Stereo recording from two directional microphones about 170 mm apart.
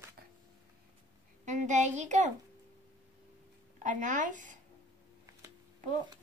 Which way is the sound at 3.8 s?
50° right (ahead or behind).